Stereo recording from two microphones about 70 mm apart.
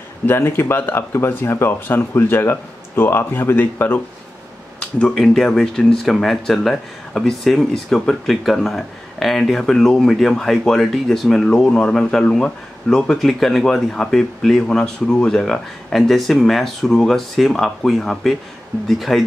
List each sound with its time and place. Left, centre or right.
0.3 s speech: left
4.7 s speech: centre